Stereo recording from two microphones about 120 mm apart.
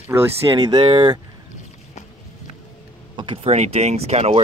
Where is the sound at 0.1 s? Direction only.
20° right (ahead or behind).